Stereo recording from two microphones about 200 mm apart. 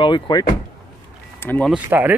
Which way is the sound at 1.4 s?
10° left (ahead or behind).